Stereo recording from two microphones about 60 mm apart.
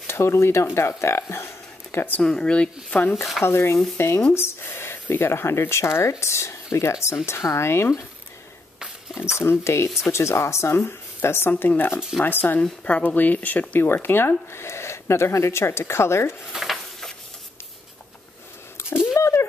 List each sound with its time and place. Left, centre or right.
0.0 s speech: left
2.2 s speech: centre
3.4 s speech: left
4.3 s a sound: left
5.1 s speech: left
8.7 s dog: centre
9.4 s speech: left
11.9 s speech: centre
12.2 s speech: left
16.5 s a sound: centre
18.8 s a sound: left